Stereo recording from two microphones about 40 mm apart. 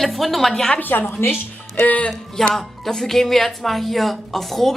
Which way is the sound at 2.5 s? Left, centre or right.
Centre.